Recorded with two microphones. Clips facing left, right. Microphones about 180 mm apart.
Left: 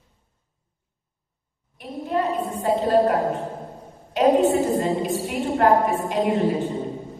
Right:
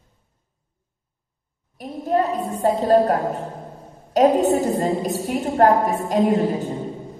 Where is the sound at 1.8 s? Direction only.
40° right (ahead or behind).